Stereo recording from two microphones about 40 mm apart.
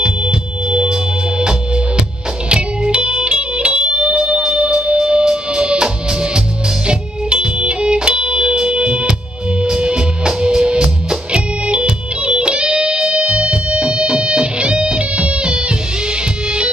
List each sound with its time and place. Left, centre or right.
0.0 s music: right
2.5 s music: right
6.9 s music: right